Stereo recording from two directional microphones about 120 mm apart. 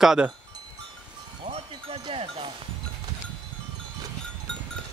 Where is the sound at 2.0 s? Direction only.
45° right (ahead or behind).